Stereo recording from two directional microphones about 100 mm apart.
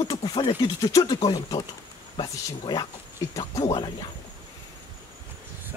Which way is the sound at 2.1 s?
50° left (ahead or behind).